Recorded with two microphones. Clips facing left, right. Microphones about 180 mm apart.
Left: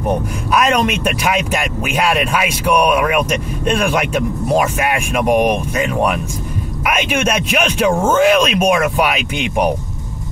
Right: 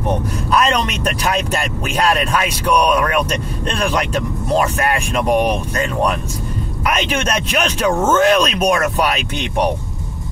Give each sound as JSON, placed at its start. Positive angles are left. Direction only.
{"t": 0.5, "sound": "speech", "side_deg": 10}